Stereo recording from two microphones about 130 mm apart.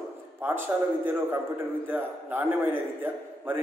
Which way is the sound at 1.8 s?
15° right (ahead or behind).